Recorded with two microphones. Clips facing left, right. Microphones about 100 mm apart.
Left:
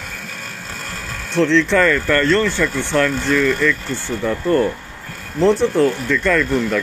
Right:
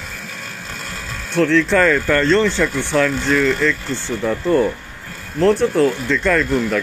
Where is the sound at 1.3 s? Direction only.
5° right (ahead or behind).